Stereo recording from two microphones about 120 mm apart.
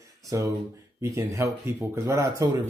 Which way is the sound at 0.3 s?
25° right (ahead or behind).